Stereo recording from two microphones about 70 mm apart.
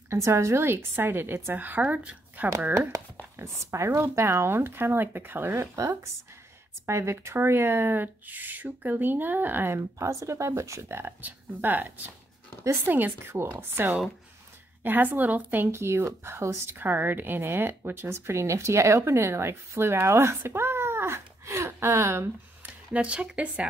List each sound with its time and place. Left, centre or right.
0.1 s speech: right
2.7 s speech: right
6.9 s speech: right
9.8 s speech: right
22.6 s speech: centre